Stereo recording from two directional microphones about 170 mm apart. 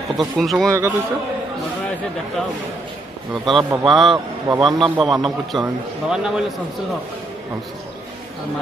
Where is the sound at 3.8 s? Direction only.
Centre (ahead or behind).